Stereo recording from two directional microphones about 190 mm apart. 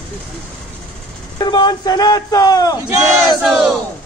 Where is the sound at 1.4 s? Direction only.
20° left (ahead or behind).